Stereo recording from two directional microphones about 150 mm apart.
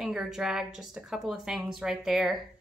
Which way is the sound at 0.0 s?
5° right (ahead or behind).